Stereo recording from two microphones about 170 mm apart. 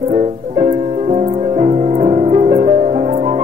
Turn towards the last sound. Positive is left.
turn(degrees=-40)  # may be behind; listen again after turning